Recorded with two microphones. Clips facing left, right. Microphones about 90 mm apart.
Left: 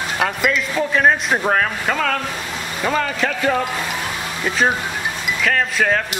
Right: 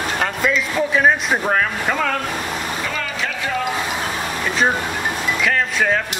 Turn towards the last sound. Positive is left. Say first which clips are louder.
# left 1 dB
turn(degrees=0)  # may be behind; listen again after turning